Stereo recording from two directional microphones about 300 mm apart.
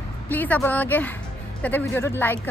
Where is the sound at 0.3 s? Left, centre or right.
Centre.